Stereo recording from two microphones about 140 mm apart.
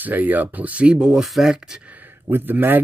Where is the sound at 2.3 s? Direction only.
15° right (ahead or behind).